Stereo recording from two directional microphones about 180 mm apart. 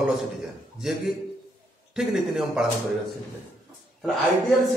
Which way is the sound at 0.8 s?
5° right (ahead or behind).